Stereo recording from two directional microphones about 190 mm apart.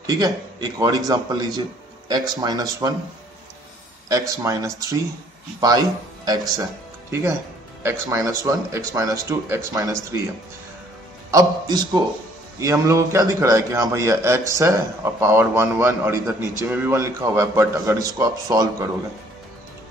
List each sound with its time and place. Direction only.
0.0 s a man's voice: 20° right (ahead or behind)
4.4 s speech: 15° right (ahead or behind)
11.2 s a man's voice: 20° right (ahead or behind)